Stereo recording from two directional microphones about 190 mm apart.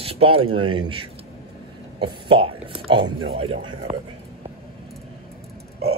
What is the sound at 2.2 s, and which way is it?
A man's voice, 25° right (ahead or behind).